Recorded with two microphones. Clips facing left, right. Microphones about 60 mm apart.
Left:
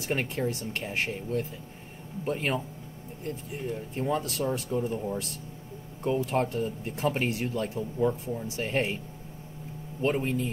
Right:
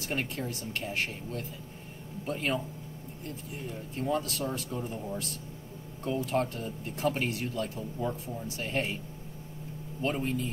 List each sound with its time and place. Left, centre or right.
0.1 s speech: left
3.9 s speech: left
10.0 s speech: left